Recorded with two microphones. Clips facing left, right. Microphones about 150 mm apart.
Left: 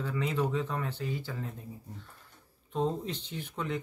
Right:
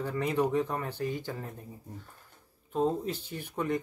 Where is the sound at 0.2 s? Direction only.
15° right (ahead or behind).